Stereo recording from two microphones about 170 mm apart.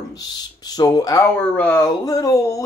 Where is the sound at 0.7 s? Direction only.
20° left (ahead or behind).